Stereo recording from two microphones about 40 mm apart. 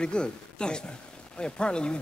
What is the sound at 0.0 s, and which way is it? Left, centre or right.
Speech, left.